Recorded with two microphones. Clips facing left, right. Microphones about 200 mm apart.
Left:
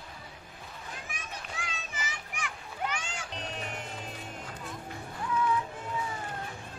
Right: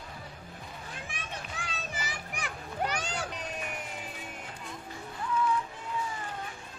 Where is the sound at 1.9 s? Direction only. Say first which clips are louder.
Right 2 dB; 35° right (ahead or behind).